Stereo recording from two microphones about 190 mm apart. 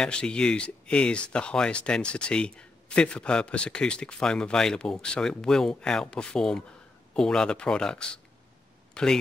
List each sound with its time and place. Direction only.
0.0 s speech: 5° left (ahead or behind)